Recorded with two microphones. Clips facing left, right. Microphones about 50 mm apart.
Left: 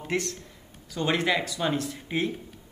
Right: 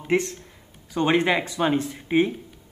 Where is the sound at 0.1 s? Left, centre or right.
Right.